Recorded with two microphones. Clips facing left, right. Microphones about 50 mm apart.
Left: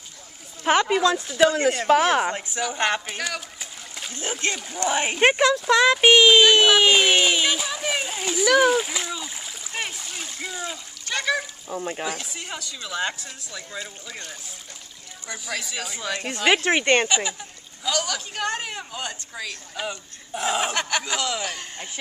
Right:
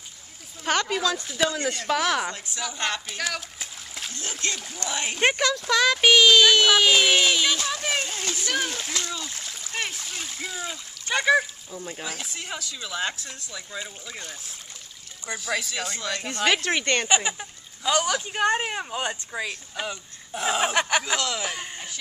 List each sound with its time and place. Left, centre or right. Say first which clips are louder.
0.7 s speech: left 5 dB; centre
1.4 s speech: left 7 dB; left
3.1 s a sound: left 1 dB; centre
4.1 s speech: left 5 dB; left
4.8 s speech: left 4 dB; left; by 10.8 s centre
11.1 s speech: right 4 dB; centre
11.7 s speech: left 8 dB; left
12.1 s speech: left 2 dB; centre
15.3 s speech: right 2 dB; centre; by 17.1 s left
17.1 s speech: right 1 dB; right
19.7 s speech: left 1 dB; centre